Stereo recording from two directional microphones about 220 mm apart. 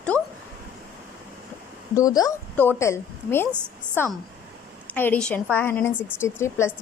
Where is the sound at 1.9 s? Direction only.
15° left (ahead or behind).